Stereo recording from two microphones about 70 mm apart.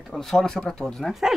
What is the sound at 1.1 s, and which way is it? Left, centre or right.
Speech, centre.